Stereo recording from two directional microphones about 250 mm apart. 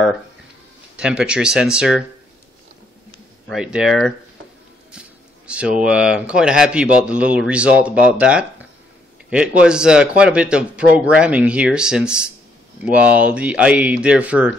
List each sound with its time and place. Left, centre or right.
0.9 s speech: centre
3.4 s speech: centre
5.5 s speech: centre